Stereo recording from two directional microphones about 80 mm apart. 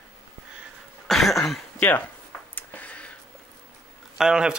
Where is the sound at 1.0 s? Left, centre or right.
Centre.